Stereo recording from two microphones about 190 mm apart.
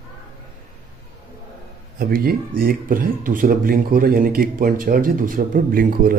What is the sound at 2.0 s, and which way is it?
Speech, 50° right (ahead or behind).